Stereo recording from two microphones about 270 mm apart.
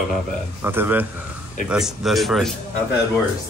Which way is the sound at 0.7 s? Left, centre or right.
Centre.